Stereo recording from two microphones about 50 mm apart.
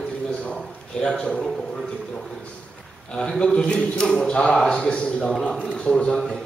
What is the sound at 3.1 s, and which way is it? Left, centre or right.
A man's voice, centre.